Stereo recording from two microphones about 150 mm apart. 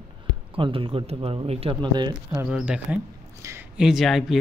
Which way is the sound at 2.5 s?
5° right (ahead or behind).